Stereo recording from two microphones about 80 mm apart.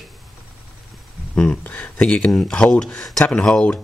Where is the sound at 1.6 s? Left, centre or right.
Centre.